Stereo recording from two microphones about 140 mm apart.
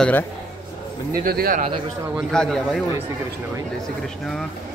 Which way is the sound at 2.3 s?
5° left (ahead or behind).